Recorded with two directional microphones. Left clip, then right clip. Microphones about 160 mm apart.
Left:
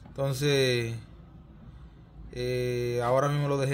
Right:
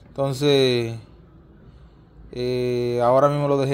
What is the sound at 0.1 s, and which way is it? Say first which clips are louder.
Speech: right 8 dB; 30° right (ahead or behind).